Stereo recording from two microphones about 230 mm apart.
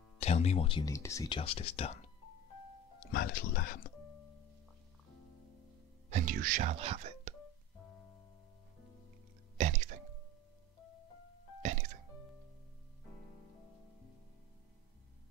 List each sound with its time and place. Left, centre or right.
0.2 s speech: left
1.4 s speech: left
3.1 s speech: left
6.0 s speech: right
9.6 s music: right